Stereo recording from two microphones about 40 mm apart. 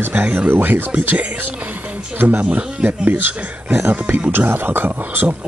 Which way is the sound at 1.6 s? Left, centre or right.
Right.